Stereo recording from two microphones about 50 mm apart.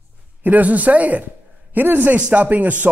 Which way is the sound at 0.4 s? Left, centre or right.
Right.